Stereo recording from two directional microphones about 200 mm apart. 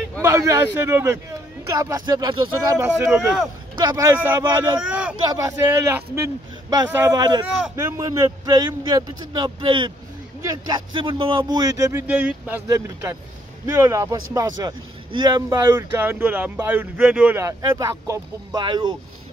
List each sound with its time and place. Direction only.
0.2 s speech: 15° right (ahead or behind)
3.1 s speech: 5° right (ahead or behind)
3.7 s a man's voice: 20° right (ahead or behind)